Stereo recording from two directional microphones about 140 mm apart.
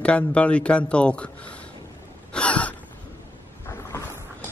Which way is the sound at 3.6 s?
20° left (ahead or behind).